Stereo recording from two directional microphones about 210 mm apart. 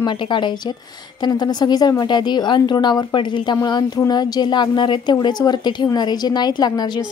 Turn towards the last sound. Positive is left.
turn(degrees=20)  # may be behind; listen again after turning